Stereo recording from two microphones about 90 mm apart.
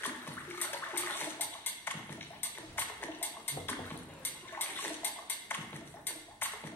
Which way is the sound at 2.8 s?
20° left (ahead or behind).